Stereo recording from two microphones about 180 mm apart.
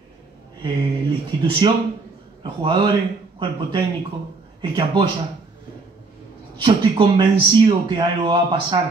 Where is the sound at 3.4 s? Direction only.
25° right (ahead or behind).